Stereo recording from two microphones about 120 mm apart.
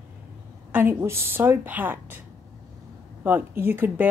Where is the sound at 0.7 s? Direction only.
20° right (ahead or behind).